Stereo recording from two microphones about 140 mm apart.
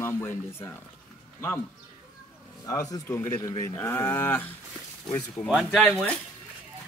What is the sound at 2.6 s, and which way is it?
A man's voice, 25° left (ahead or behind).